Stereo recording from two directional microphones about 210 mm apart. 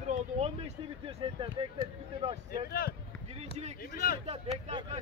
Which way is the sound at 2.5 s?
45° left (ahead or behind).